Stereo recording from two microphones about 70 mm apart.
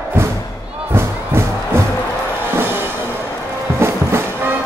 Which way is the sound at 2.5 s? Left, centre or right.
Right.